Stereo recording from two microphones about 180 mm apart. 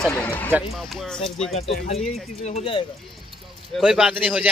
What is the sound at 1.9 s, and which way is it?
Speech, 40° left (ahead or behind).